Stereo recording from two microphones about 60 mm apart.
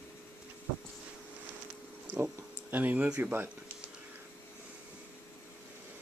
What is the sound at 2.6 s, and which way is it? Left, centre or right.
Speech, right.